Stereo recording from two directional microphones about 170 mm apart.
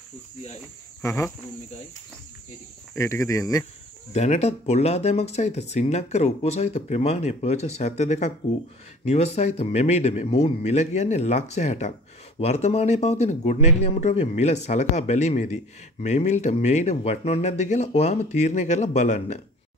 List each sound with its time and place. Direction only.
1.0 s speech: 15° left (ahead or behind)
2.9 s speech: 15° left (ahead or behind)
4.1 s speech: 40° left (ahead or behind)